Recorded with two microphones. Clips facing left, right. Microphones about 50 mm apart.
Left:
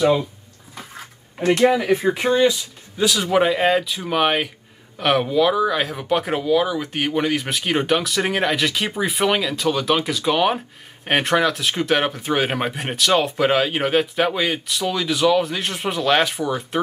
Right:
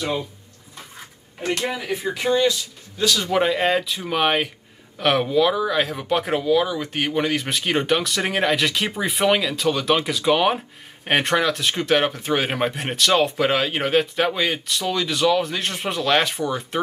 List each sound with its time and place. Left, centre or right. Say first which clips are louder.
1.8 s speech: left 7 dB; left
2.2 s speech: left 1 dB; left
3.0 s speech: left 2 dB; centre